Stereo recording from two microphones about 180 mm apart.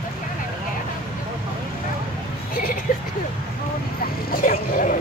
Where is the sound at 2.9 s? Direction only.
50° left (ahead or behind).